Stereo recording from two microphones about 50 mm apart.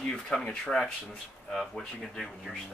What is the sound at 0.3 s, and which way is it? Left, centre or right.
Speech, centre.